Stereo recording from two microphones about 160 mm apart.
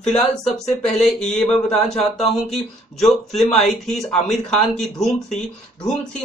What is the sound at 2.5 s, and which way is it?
Speech, centre (ahead or behind).